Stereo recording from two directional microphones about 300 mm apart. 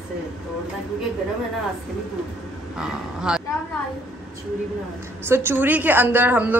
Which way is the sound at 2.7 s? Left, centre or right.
Centre.